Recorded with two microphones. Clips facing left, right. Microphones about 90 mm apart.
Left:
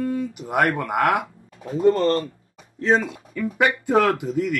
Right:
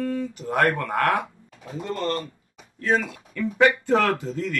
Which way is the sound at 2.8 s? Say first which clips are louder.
Left 3 dB; 25° left (ahead or behind).